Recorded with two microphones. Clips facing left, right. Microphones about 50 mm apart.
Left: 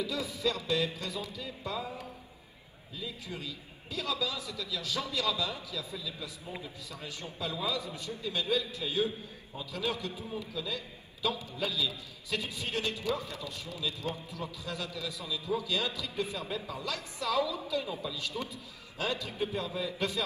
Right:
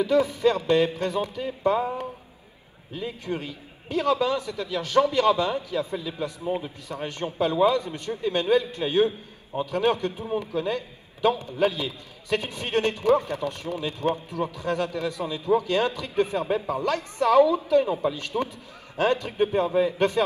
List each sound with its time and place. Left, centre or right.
0.0 s a man's voice: right